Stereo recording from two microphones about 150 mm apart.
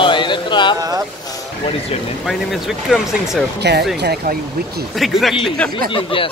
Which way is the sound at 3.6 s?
90° right.